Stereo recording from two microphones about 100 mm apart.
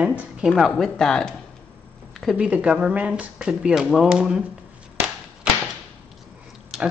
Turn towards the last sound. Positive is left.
turn(degrees=0)  # may be behind; listen again after turning